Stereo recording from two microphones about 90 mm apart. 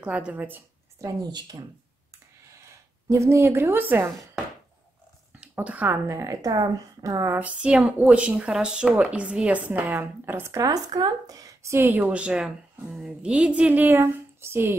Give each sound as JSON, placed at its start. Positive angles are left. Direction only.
{"t": 0.0, "sound": "a woman's voice", "side_deg": -15}
{"t": 1.0, "sound": "speech", "side_deg": -45}
{"t": 3.1, "sound": "a woman's voice", "side_deg": -30}
{"t": 5.4, "sound": "a woman's voice", "side_deg": -15}
{"t": 6.0, "sound": "speech", "side_deg": -35}
{"t": 7.3, "sound": "a woman's voice", "side_deg": -15}
{"t": 10.6, "sound": "speech", "side_deg": -45}
{"t": 12.1, "sound": "a woman's voice", "side_deg": -10}